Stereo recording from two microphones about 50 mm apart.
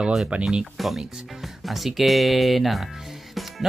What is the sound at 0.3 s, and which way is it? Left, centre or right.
Speech, centre.